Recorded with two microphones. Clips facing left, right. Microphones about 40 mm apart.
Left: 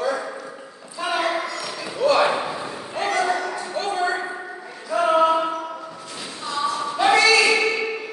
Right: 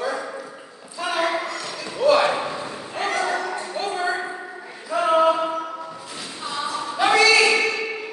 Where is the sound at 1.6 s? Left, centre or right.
Centre.